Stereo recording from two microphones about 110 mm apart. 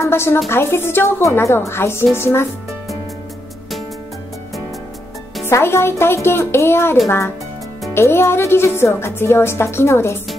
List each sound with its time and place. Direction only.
0.0 s a woman's voice: 20° left (ahead or behind)
5.5 s speech: 25° left (ahead or behind)